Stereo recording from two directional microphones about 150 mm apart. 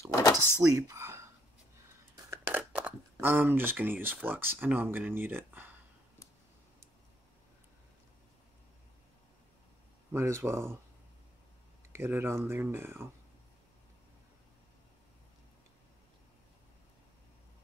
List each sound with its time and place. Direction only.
0.1 s a sound: 20° left (ahead or behind)
0.7 s whispering: 20° right (ahead or behind)
2.3 s speech: 10° right (ahead or behind)
10.1 s speech: 20° right (ahead or behind)
11.9 s speech: 15° right (ahead or behind)